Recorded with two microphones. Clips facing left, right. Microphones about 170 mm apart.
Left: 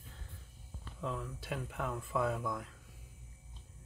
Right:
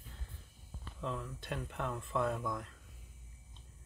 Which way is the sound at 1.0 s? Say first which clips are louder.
Left 1 dB; 5° left (ahead or behind).